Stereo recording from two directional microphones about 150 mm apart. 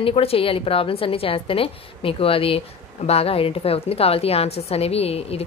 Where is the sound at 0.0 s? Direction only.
40° left (ahead or behind).